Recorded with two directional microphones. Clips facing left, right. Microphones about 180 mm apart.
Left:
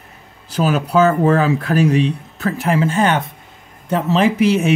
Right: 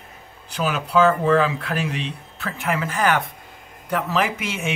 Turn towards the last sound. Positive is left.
turn(degrees=35)  # may be behind; listen again after turning